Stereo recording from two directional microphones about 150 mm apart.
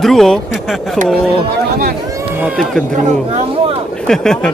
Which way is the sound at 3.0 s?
45° right (ahead or behind).